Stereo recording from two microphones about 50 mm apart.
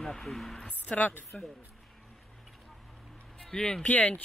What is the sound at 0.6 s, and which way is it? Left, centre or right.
Speech, left.